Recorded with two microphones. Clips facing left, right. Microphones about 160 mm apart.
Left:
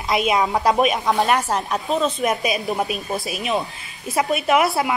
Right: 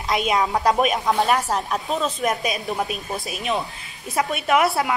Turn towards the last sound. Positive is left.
turn(degrees=0)  # may be behind; listen again after turning